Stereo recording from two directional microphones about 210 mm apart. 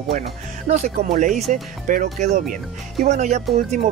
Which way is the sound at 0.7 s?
35° right (ahead or behind).